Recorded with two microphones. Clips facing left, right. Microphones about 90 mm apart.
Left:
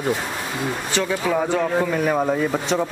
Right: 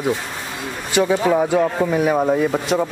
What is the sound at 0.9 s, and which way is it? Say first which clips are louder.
A man's voice: right 7 dB; 15° right (ahead or behind).